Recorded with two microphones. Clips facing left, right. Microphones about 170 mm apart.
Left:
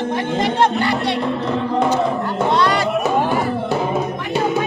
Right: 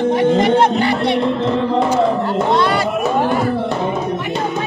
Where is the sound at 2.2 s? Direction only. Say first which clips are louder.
Right 2 dB; 25° right (ahead or behind).